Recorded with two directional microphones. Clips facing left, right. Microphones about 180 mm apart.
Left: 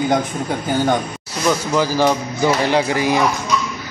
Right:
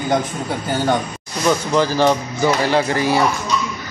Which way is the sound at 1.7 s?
10° left (ahead or behind).